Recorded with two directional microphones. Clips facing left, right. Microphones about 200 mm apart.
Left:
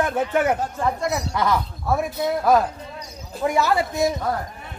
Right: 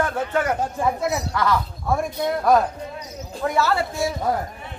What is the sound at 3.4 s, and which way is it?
Speech, 15° left (ahead or behind).